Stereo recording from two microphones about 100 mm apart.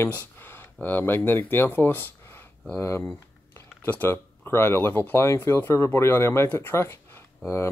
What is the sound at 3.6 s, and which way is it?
Speech, 20° left (ahead or behind).